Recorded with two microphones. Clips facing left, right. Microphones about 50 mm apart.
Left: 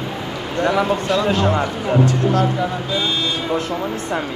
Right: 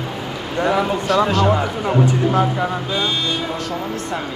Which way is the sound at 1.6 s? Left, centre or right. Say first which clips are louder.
Even; centre.